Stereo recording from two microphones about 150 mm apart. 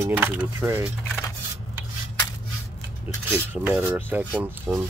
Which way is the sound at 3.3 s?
10° right (ahead or behind).